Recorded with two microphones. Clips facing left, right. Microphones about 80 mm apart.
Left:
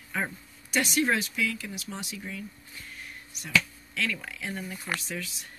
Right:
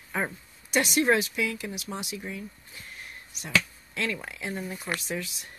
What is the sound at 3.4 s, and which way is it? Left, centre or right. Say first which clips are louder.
Speech: even; right.